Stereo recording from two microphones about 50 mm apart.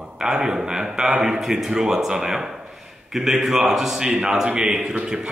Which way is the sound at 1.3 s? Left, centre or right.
Centre.